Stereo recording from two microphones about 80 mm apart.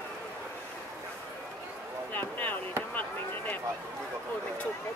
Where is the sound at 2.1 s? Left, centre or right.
Left.